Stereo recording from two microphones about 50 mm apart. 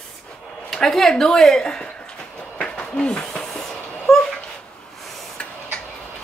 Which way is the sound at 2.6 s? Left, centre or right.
Centre.